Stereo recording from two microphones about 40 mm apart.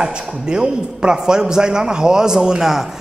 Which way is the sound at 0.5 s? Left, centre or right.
Right.